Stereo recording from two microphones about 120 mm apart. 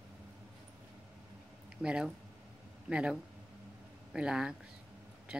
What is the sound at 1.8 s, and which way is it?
Speech, 5° right (ahead or behind).